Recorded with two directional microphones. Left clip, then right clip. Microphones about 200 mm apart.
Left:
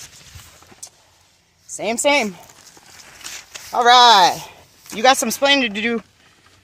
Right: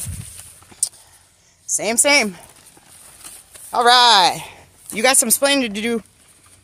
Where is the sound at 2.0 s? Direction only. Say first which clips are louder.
Right 1 dB; 5° right (ahead or behind).